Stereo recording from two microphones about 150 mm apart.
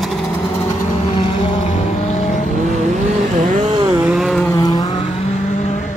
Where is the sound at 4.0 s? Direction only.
5° right (ahead or behind).